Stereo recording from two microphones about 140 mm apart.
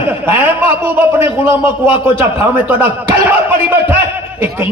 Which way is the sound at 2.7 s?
15° right (ahead or behind).